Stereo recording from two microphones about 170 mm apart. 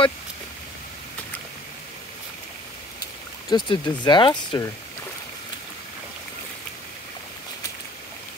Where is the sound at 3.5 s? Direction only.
25° left (ahead or behind).